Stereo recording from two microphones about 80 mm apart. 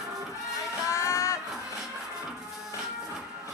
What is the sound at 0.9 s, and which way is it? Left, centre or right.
Music, left.